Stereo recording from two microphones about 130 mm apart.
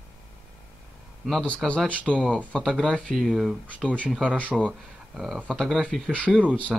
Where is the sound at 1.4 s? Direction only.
10° left (ahead or behind).